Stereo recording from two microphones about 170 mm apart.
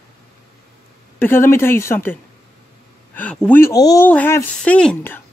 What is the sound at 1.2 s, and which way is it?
Speech, 15° left (ahead or behind).